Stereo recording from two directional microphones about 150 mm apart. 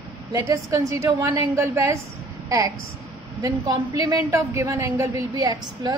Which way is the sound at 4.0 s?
20° right (ahead or behind).